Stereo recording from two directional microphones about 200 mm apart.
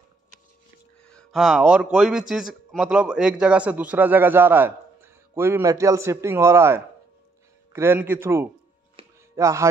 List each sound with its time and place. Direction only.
1.0 s a man's voice: centre (ahead or behind)
8.9 s chopping: 15° right (ahead or behind)